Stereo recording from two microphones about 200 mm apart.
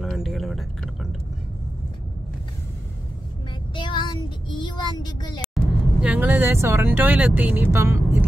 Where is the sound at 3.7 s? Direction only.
25° left (ahead or behind).